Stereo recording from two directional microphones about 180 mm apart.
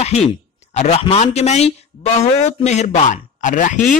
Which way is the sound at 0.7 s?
35° left (ahead or behind).